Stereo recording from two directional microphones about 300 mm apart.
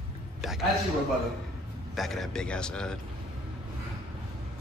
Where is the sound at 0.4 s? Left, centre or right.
Centre.